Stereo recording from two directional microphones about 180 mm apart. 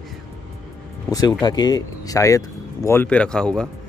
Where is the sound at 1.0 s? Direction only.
20° left (ahead or behind).